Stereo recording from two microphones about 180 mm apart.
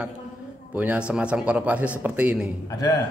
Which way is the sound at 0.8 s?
5° right (ahead or behind).